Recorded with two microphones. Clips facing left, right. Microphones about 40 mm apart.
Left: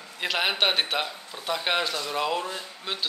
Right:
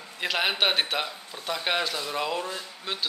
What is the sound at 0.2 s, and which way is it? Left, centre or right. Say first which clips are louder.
A man's voice: even; centre.